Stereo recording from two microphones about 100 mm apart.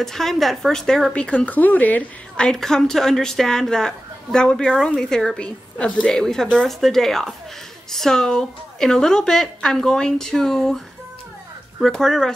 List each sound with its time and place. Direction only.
0.0 s speech: 5° left (ahead or behind)
11.8 s speech: 5° left (ahead or behind)